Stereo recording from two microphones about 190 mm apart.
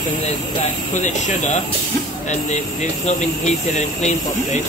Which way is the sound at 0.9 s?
40° left (ahead or behind).